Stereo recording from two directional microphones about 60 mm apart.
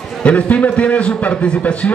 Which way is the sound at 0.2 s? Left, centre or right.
Left.